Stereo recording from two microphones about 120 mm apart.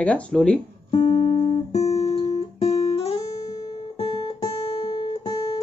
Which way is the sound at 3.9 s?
40° left (ahead or behind).